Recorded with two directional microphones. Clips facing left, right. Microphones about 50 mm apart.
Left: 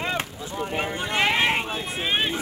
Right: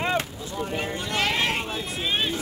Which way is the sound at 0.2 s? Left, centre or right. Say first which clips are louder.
Left 1 dB; left.